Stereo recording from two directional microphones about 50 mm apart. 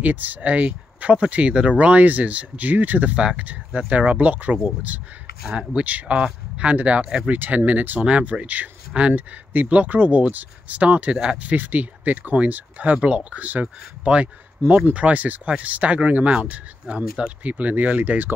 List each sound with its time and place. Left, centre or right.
0.0 s speech: right
5.4 s speech: centre
5.7 s speech: right